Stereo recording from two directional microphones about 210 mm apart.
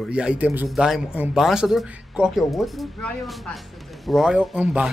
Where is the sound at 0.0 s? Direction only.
5° right (ahead or behind).